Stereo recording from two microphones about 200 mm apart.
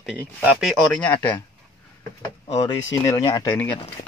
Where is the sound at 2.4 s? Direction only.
30° left (ahead or behind).